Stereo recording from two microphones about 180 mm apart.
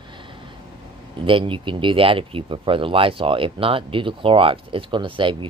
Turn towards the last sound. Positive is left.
turn(degrees=-30)  # may be behind; listen again after turning